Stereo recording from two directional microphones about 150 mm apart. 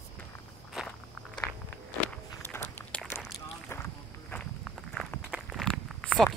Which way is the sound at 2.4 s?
15° left (ahead or behind).